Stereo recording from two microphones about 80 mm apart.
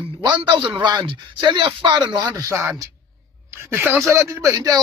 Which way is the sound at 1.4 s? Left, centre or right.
Right.